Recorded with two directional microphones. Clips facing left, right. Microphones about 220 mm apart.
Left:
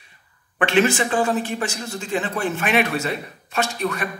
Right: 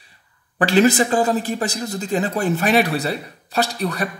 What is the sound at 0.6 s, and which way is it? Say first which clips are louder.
Speech: right 3 dB; 35° right (ahead or behind).